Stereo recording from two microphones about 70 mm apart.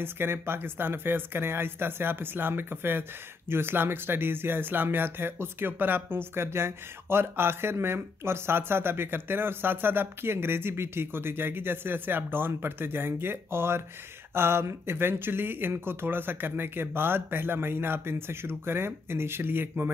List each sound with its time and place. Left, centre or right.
0.0 s speech: right